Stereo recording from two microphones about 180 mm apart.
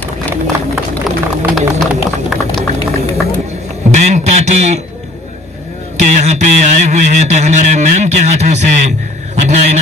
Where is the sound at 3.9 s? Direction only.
40° right (ahead or behind).